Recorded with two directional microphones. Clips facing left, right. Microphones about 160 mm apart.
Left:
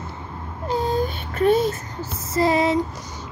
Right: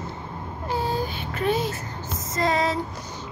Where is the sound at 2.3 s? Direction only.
30° left (ahead or behind).